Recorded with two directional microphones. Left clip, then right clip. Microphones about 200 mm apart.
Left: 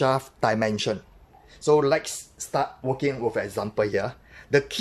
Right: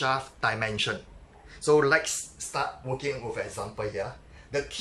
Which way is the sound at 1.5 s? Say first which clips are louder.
Left 2 dB; 15° left (ahead or behind).